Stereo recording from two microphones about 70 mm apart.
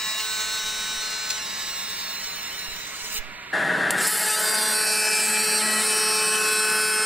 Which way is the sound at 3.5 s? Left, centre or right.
Centre.